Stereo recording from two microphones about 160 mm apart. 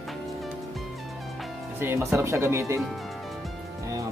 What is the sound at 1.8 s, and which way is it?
Speech, 15° right (ahead or behind).